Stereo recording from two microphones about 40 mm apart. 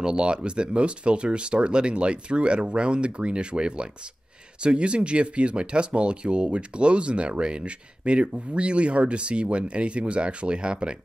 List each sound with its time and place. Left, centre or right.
0.0 s speech: right